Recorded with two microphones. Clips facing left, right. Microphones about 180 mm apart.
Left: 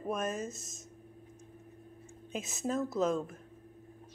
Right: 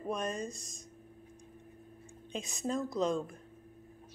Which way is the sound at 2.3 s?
5° left (ahead or behind).